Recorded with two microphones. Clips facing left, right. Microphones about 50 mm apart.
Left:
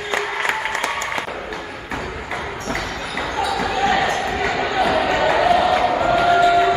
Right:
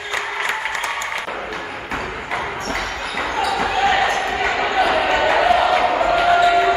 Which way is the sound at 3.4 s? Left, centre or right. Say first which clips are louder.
Right 1 dB; right.